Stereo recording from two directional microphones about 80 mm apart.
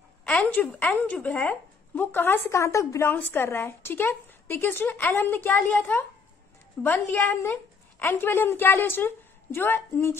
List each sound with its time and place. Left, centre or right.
0.2 s a sound: centre
0.9 s a woman's voice: left
3.1 s a woman's voice: left